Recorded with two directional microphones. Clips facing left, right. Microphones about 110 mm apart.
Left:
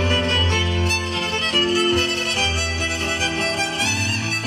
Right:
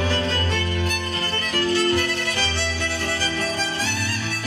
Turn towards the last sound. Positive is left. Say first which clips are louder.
# left 1 dB
turn(degrees=60)  # may be behind; listen again after turning